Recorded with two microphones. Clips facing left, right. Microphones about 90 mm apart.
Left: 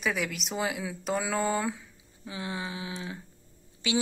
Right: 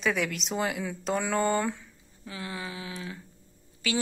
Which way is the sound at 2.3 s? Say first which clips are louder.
Left 2 dB; 20° left (ahead or behind).